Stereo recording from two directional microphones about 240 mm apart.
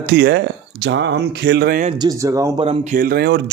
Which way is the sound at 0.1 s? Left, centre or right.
Right.